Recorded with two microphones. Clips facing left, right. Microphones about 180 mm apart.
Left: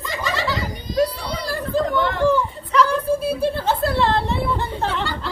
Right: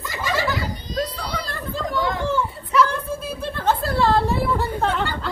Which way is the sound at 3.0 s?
10° left (ahead or behind).